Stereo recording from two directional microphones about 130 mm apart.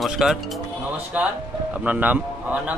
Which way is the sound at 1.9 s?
10° right (ahead or behind).